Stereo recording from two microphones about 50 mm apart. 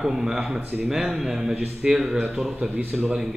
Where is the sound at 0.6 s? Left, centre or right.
Right.